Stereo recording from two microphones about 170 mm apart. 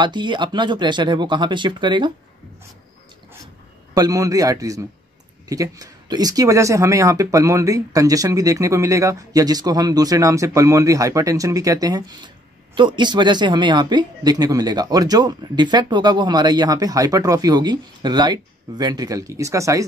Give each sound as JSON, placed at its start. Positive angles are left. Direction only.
{"t": 0.0, "sound": "speech", "side_deg": -25}
{"t": 3.9, "sound": "speech", "side_deg": -20}